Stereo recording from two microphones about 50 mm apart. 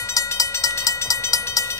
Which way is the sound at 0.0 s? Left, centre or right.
Left.